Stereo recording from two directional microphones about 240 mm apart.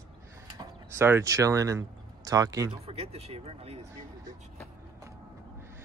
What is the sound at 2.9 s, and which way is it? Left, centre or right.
Speech, right.